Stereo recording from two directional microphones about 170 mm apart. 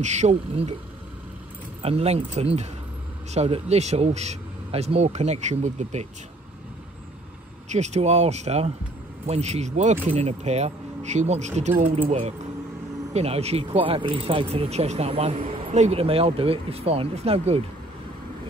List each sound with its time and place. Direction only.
0.0 s speech: 40° right (ahead or behind)
1.8 s speech: 35° right (ahead or behind)
7.7 s speech: 40° right (ahead or behind)